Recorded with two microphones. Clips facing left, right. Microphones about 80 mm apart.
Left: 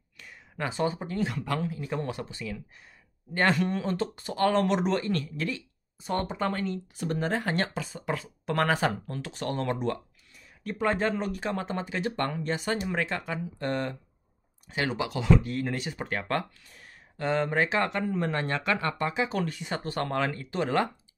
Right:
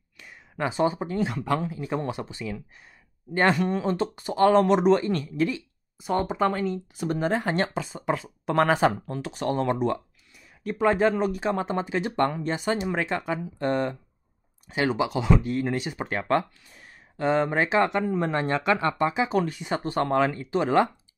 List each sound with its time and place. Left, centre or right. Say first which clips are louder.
0.2 s speech: right 5 dB; centre